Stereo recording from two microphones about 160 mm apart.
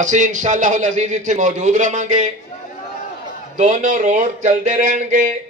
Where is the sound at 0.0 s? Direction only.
50° right (ahead or behind).